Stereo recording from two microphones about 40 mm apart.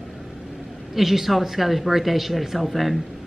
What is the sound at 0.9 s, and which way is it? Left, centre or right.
Speech, centre.